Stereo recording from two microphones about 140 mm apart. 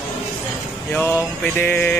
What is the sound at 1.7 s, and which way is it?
Mantra, 15° left (ahead or behind).